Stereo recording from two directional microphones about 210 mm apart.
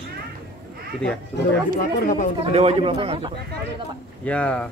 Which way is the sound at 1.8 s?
50° left (ahead or behind).